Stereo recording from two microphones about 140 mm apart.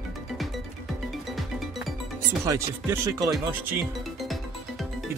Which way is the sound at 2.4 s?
20° right (ahead or behind).